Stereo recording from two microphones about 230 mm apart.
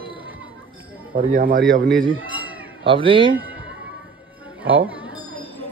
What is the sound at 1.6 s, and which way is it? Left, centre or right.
Speech, centre.